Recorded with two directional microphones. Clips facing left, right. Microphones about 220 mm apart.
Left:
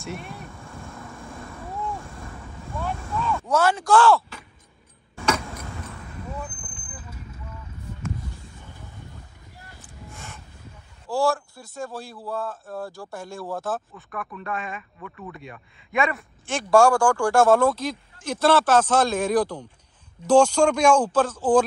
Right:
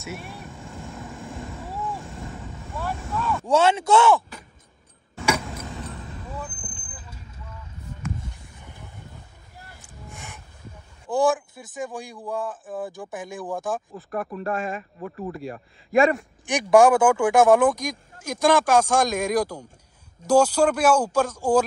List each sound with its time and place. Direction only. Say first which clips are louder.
0.0 s vehicle: left 1 dB; centre (ahead or behind)
0.5 s vehicle: right 2 dB; 15° right (ahead or behind)
1.7 s vehicle: left 1 dB; 5° right (ahead or behind)
2.0 s vehicle: right 3 dB; 20° right (ahead or behind)
2.6 s vehicle: left 1 dB; centre (ahead or behind)
3.4 s speech: right 3 dB; 25° right (ahead or behind)
5.1 s vehicle: even; 10° right (ahead or behind)
5.7 s basketball bounce: right 2 dB; 20° right (ahead or behind)
11.1 s speech: right 2 dB; 20° right (ahead or behind)
14.2 s speech: right 6 dB; 40° right (ahead or behind)
14.5 s speech: right 4 dB; centre (ahead or behind)
15.0 s speech: right 6 dB; 35° right (ahead or behind)
16.4 s speech: right 2 dB; 15° right (ahead or behind)